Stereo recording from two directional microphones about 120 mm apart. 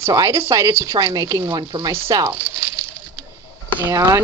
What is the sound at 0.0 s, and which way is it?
A woman's voice, 25° right (ahead or behind).